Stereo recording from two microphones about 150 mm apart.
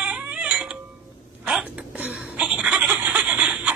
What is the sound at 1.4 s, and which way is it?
Chuckle, 5° right (ahead or behind).